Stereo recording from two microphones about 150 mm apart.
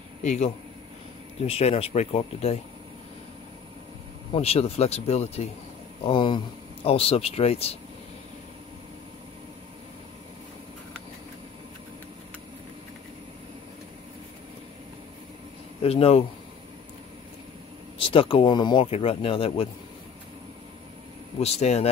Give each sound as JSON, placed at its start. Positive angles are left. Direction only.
{"t": 0.2, "sound": "a man's voice", "side_deg": 50}
{"t": 4.3, "sound": "speech", "side_deg": 45}
{"t": 6.0, "sound": "speech", "side_deg": 35}
{"t": 15.8, "sound": "speech", "side_deg": 40}
{"t": 17.9, "sound": "speech", "side_deg": 35}
{"t": 18.9, "sound": "speech", "side_deg": 40}
{"t": 21.4, "sound": "speech", "side_deg": 45}